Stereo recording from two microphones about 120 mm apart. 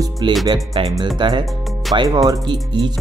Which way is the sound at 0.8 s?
45° right (ahead or behind).